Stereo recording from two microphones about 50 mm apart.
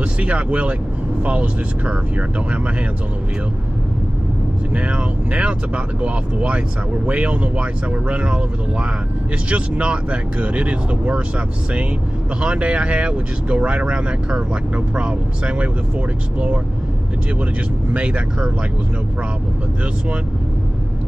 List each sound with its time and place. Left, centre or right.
0.0 s speech: right
4.7 s speech: right
17.9 s speech: right